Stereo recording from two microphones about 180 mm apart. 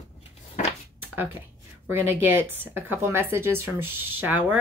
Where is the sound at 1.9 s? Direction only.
15° right (ahead or behind).